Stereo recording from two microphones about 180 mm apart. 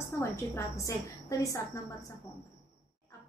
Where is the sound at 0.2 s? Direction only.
15° left (ahead or behind).